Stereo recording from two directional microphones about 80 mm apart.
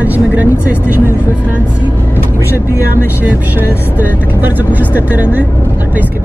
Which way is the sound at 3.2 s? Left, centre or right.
Right.